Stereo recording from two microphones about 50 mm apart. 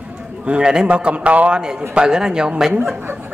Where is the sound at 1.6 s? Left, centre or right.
Centre.